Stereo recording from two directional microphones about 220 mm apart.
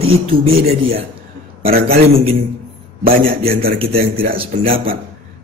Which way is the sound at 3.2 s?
25° right (ahead or behind).